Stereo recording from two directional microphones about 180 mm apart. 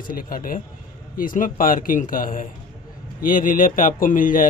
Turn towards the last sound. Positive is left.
turn(degrees=50)  # may be behind; listen again after turning